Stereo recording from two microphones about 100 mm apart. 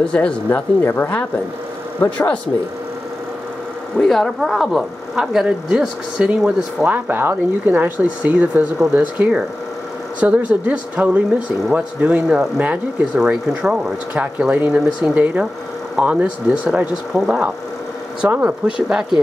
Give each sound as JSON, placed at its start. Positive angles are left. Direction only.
{"t": 0.0, "sound": "speech", "side_deg": 10}
{"t": 4.1, "sound": "speech", "side_deg": 0}